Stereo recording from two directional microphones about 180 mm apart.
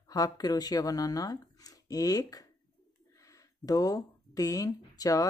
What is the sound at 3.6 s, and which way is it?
Speech, 20° left (ahead or behind).